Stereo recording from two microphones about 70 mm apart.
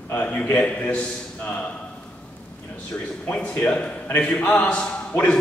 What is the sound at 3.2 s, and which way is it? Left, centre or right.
A man's voice, left.